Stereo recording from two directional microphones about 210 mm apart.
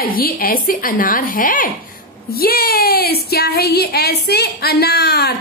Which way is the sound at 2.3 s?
45° left (ahead or behind).